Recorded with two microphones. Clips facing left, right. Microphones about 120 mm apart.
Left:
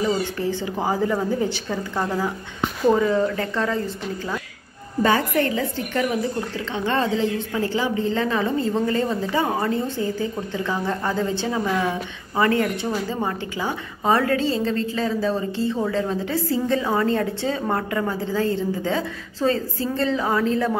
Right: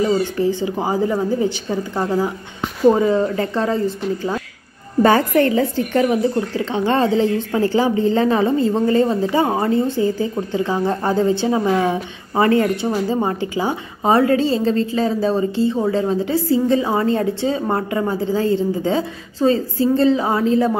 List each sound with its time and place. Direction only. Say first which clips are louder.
0.4 s a woman's voice: right 5 dB; 15° right (ahead or behind)
5.0 s a woman's voice: right 6 dB; 40° right (ahead or behind); by 20.7 s 20° right (ahead or behind)